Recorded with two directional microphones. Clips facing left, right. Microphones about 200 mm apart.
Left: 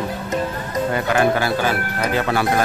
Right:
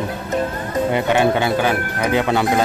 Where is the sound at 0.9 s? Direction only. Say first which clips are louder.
Right 1 dB; 25° right (ahead or behind).